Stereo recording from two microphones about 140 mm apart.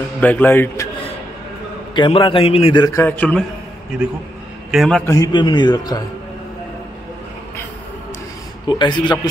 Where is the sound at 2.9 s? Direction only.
15° left (ahead or behind).